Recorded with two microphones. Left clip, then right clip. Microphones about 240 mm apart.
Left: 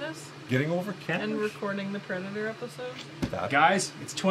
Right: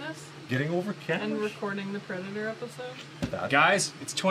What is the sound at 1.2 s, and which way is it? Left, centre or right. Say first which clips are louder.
Speech: left 1 dB; centre.